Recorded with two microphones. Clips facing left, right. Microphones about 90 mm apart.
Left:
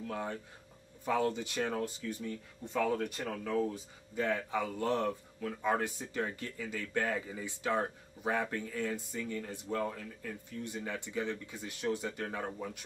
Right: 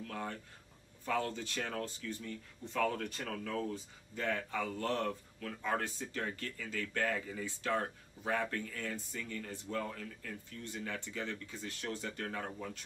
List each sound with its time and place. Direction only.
0.0 s speech: 15° left (ahead or behind)